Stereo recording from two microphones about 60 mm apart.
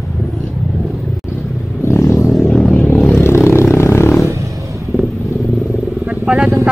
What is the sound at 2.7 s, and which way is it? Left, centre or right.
Vehicle, left.